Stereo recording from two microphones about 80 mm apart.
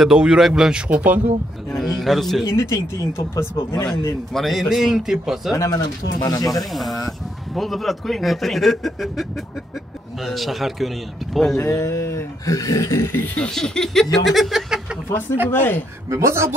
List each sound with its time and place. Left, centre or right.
0.0 s speech: centre
1.8 s a man's voice: centre
2.4 s speech: left
4.3 s a man's voice: centre
5.8 s speech: left
6.7 s a man's voice: centre
11.5 s speech: left
13.4 s a man's voice: centre
15.5 s speech: left
16.1 s speech: right